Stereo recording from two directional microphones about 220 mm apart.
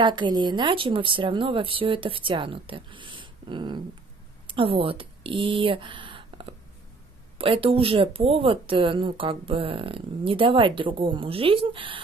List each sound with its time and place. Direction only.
0.0 s speech: 20° right (ahead or behind)